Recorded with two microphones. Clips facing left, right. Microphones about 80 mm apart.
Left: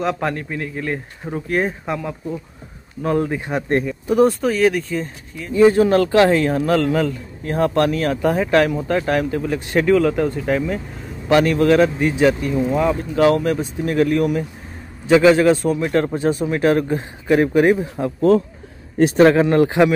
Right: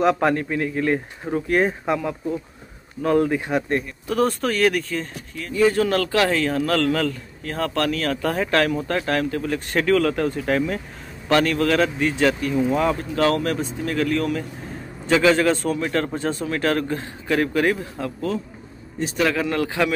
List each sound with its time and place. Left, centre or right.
0.0 s speech: centre
5.5 s speech: left
8.3 s speech: centre
11.2 s speech: centre
15.5 s speech: centre
19.1 s speech: left